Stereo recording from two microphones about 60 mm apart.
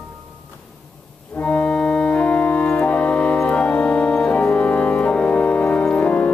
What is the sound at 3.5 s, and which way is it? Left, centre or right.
Music, centre.